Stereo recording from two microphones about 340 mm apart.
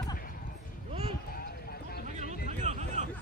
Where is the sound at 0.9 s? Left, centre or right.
Centre.